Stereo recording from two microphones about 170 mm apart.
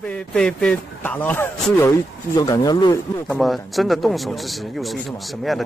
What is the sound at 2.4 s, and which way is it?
Speech, 25° left (ahead or behind).